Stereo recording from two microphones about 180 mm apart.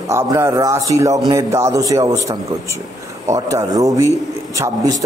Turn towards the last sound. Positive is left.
turn(degrees=-20)  # may be behind; listen again after turning